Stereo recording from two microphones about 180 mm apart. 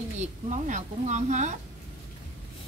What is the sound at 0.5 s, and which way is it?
A woman's voice, 40° right (ahead or behind).